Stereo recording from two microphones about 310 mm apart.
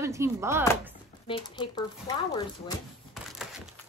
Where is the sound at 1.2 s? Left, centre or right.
Centre.